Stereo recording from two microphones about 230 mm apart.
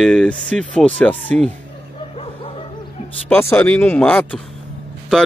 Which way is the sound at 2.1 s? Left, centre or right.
Left.